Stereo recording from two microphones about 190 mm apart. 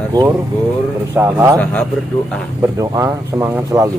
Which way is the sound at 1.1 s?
10° right (ahead or behind).